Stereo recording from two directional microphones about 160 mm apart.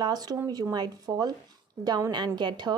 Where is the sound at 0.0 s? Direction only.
25° right (ahead or behind).